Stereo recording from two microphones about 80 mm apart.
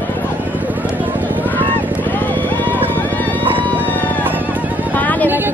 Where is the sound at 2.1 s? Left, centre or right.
Left.